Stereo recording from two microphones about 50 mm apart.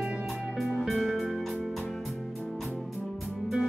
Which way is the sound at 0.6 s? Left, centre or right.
Centre.